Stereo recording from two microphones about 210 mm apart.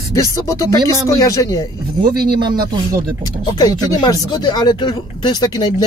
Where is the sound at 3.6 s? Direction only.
20° left (ahead or behind).